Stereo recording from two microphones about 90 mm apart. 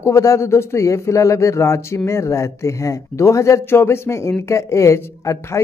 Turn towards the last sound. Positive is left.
turn(degrees=35)  # may be behind; listen again after turning